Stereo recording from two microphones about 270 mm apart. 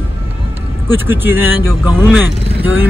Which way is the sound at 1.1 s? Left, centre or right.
Centre.